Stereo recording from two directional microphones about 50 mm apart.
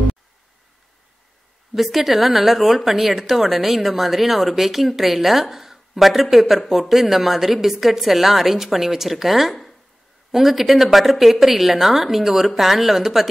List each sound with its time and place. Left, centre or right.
1.8 s a woman's voice: centre